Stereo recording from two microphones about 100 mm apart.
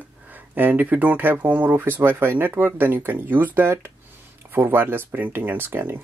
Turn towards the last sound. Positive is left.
turn(degrees=-20)  # may be behind; listen again after turning